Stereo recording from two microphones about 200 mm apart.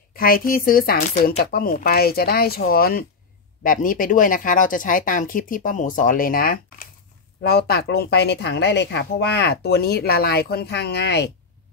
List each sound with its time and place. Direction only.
0.1 s speech: 45° left (ahead or behind)